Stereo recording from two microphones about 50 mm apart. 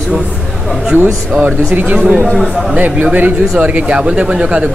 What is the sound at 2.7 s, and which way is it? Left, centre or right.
Speech, right.